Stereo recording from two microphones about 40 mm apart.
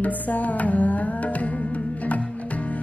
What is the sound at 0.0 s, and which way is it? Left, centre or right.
Music, left.